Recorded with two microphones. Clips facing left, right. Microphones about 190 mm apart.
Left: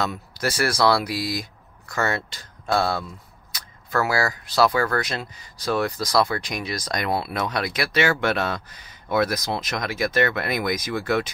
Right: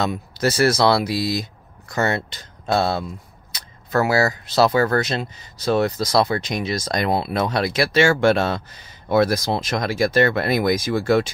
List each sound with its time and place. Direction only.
0.0 s speech: 25° right (ahead or behind)